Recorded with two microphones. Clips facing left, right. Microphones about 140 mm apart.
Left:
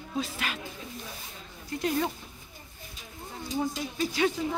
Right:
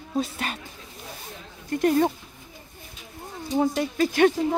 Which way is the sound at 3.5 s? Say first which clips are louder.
Right 8 dB; 60° right (ahead or behind).